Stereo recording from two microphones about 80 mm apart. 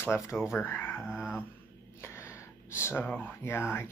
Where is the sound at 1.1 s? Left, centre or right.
Centre.